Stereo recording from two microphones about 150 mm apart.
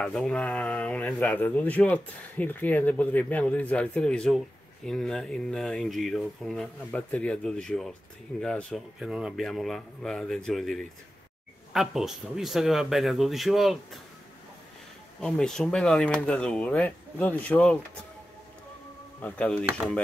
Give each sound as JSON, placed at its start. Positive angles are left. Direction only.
{"t": 0.0, "sound": "speech", "side_deg": 5}
{"t": 15.1, "sound": "speech", "side_deg": 5}
{"t": 19.2, "sound": "speech", "side_deg": 10}